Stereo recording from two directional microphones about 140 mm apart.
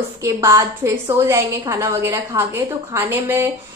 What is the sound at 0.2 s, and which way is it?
A woman's voice, 25° right (ahead or behind).